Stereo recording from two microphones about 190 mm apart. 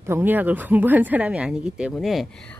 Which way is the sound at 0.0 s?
10° right (ahead or behind).